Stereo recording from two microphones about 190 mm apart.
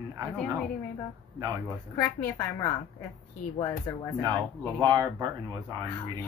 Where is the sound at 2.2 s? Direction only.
10° left (ahead or behind).